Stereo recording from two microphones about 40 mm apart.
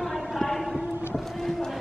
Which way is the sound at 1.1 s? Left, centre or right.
Centre.